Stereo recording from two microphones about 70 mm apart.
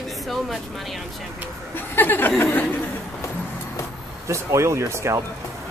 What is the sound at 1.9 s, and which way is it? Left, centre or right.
Speech, left.